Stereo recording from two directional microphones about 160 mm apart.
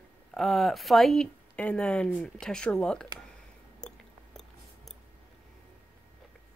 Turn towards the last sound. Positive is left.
turn(degrees=0)  # may be behind; listen again after turning